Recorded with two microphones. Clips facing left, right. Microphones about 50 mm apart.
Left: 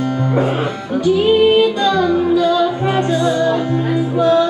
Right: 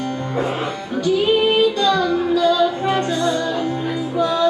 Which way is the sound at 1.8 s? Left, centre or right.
Centre.